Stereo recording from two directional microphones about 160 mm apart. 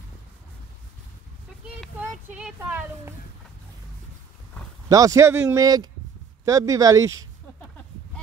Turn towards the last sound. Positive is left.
turn(degrees=-20)  # may be behind; listen again after turning